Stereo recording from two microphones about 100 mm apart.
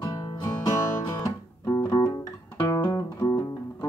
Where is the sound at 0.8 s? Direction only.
30° left (ahead or behind).